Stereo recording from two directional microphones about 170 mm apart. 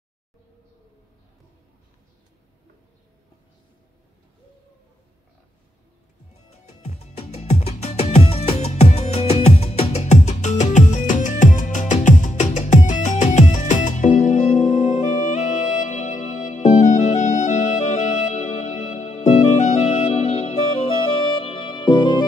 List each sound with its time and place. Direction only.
6.7 s music: 40° left (ahead or behind)